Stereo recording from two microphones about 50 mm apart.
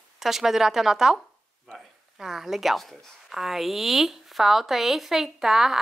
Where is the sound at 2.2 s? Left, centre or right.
Centre.